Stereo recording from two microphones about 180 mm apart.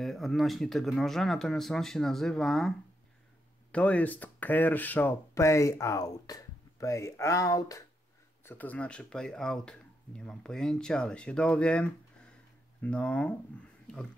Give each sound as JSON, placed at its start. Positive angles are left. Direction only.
{"t": 0.0, "sound": "speech", "side_deg": 0}
{"t": 3.7, "sound": "speech", "side_deg": 5}